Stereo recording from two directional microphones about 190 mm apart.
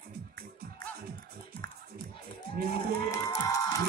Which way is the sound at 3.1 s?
15° left (ahead or behind).